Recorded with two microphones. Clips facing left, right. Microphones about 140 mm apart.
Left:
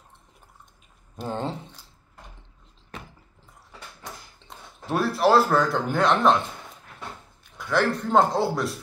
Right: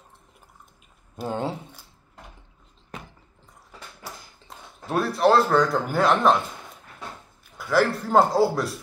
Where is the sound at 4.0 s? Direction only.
Centre (ahead or behind).